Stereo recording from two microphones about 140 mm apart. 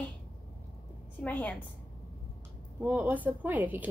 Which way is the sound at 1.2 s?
10° left (ahead or behind).